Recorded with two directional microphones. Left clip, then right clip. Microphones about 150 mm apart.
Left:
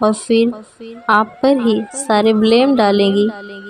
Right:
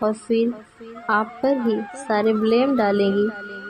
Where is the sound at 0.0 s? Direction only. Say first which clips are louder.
Left 7 dB; 40° left (ahead or behind).